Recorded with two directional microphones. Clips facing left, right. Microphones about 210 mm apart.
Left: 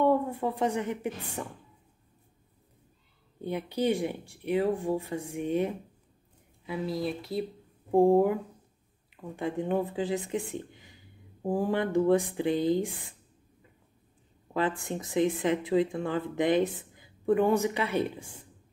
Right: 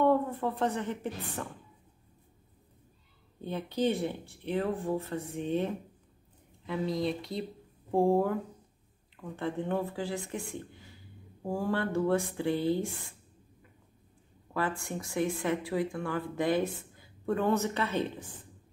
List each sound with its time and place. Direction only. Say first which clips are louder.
0.0 s a woman's voice: left 1 dB; 15° left (ahead or behind)
3.3 s speech: left 1 dB; 15° left (ahead or behind)
7.9 s speech: left 4 dB; 15° left (ahead or behind)
14.5 s speech: left 3 dB; 20° left (ahead or behind)